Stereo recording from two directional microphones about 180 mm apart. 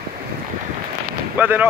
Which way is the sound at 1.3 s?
10° right (ahead or behind).